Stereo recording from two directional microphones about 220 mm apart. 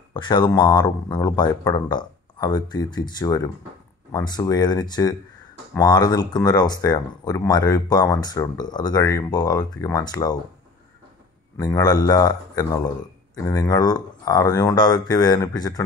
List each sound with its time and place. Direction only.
0.1 s speech: 20° left (ahead or behind)
11.5 s speech: 15° left (ahead or behind)